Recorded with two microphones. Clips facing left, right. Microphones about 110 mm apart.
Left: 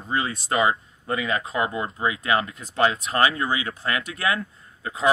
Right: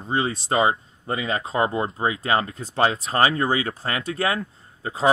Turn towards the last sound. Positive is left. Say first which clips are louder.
# right 2 dB
turn(degrees=-30)  # may be behind; listen again after turning